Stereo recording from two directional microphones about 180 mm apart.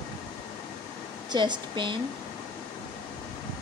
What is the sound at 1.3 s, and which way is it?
Speech, 25° right (ahead or behind).